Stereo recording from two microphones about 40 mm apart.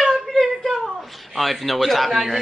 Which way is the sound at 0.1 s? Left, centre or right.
Centre.